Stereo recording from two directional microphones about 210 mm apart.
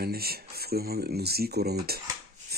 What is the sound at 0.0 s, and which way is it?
Speech, 45° right (ahead or behind).